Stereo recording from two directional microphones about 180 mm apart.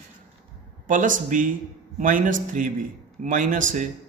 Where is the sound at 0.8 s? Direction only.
45° right (ahead or behind).